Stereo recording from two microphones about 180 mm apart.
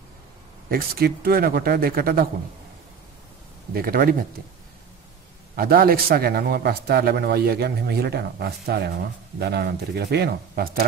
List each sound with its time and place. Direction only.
0.7 s a man's voice: 55° right (ahead or behind)
3.7 s a man's voice: 55° right (ahead or behind)
5.6 s a man's voice: 55° right (ahead or behind)